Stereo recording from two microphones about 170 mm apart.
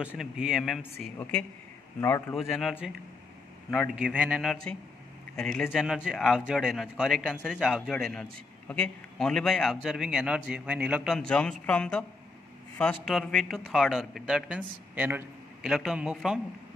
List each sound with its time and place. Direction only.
0.2 s a man's voice: centre (ahead or behind)
2.0 s a man's voice: 15° left (ahead or behind)
2.3 s a man's voice: centre (ahead or behind)
3.7 s a man's voice: centre (ahead or behind)